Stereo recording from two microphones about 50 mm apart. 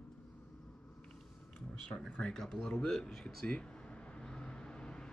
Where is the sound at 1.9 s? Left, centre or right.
Centre.